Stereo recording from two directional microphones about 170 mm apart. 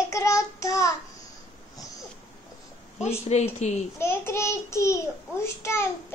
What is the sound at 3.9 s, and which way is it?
A child's voice, 15° left (ahead or behind).